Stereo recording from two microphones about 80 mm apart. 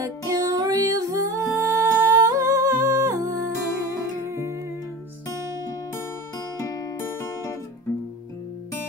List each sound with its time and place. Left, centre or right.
0.0 s music: right
0.6 s music: right
4.3 s music: right
6.6 s music: left
7.0 s music: left